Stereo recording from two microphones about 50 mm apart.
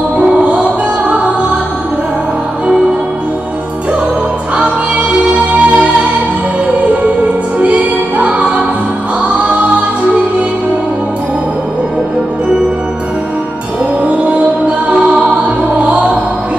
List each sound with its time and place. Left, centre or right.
0.2 s music: right
4.6 s music: right
7.6 s music: right
14.0 s music: right